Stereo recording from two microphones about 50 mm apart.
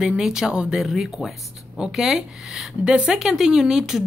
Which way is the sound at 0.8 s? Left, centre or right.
Centre.